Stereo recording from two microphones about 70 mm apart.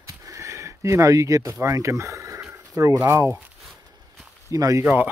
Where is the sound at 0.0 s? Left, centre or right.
Right.